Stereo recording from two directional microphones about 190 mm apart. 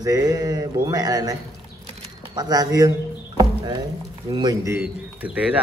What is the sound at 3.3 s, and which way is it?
Rowboat, 25° right (ahead or behind).